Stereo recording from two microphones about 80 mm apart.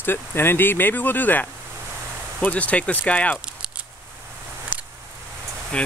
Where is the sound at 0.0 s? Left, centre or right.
Left.